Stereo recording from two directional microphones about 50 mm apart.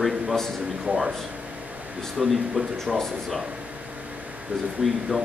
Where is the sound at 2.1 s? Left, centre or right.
Centre.